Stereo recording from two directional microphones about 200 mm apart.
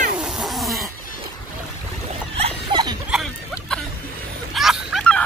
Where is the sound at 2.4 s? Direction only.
25° right (ahead or behind).